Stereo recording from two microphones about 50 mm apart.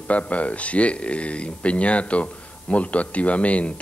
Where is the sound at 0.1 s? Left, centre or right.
Left.